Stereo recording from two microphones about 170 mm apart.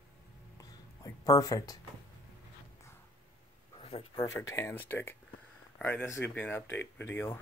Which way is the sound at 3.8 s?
35° left (ahead or behind).